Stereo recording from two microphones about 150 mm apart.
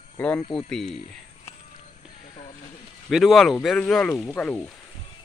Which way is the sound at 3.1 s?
Centre (ahead or behind).